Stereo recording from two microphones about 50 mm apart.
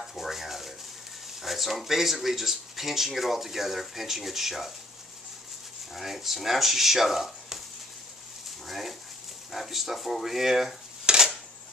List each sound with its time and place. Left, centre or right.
0.0 s rub: centre
1.4 s speech: centre
5.9 s speech: centre
8.6 s speech: centre
11.1 s cutlery: centre